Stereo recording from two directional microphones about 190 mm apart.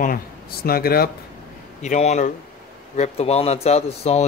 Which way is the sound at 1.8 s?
35° left (ahead or behind).